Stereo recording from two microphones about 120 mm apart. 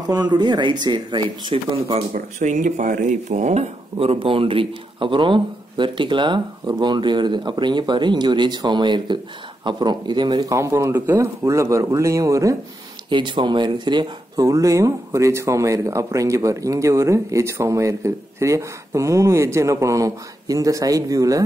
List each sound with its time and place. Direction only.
0.3 s speech: 35° right (ahead or behind)
2.4 s speech: 90° right; by 12.5 s 25° right (ahead or behind)
13.1 s speech: 40° right (ahead or behind)
14.4 s speech: 30° right (ahead or behind)